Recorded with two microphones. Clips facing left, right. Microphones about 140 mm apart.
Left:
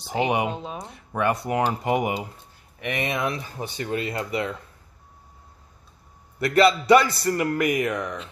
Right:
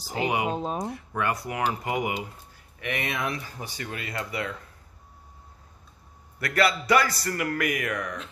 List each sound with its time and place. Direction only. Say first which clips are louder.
0.1 s a man's voice: left 4 dB; 25° left (ahead or behind)
0.5 s speech: right 3 dB; 40° right (ahead or behind)
0.9 s a man's voice: left 4 dB; 20° left (ahead or behind)
6.4 s a man's voice: left 6 dB; 25° left (ahead or behind)